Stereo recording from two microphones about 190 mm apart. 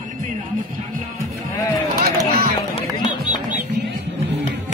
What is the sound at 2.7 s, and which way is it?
Music, 30° left (ahead or behind).